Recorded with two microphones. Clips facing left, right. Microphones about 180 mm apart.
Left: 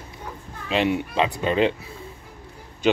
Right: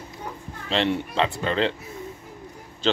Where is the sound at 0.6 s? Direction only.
10° left (ahead or behind).